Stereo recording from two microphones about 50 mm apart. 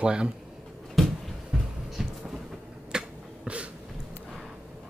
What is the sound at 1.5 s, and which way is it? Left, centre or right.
Music, centre.